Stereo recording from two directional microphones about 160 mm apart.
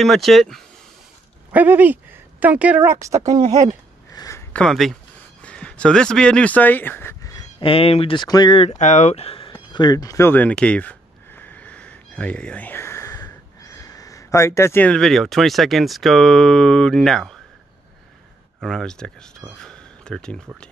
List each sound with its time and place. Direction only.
0.0 s speech: centre (ahead or behind)
1.5 s speech: 10° right (ahead or behind)
4.1 s a sound: 20° left (ahead or behind); by 4.9 s centre (ahead or behind)
5.4 s speech: 5° left (ahead or behind)
7.3 s speech: 35° left (ahead or behind)
8.7 s speech: 50° left (ahead or behind); by 17.4 s centre (ahead or behind)
18.6 s speech: 5° left (ahead or behind)
19.6 s a sound: 5° left (ahead or behind)